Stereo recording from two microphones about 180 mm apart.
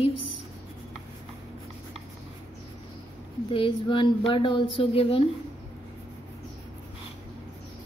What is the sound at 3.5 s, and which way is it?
A woman's voice, 30° left (ahead or behind).